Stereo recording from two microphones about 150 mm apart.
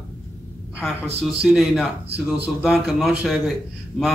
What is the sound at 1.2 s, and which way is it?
A man's voice, centre (ahead or behind).